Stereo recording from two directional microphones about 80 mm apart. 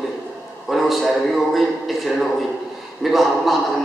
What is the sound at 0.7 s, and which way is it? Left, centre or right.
A man's voice, centre.